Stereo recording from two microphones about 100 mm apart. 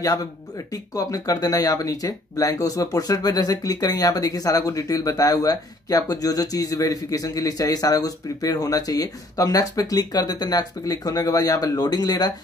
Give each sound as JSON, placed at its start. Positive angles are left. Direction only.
{"t": 0.9, "sound": "speech", "side_deg": 35}